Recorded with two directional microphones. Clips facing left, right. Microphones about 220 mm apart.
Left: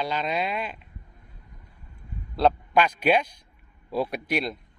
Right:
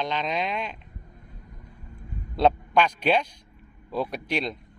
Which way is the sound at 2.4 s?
5° left (ahead or behind).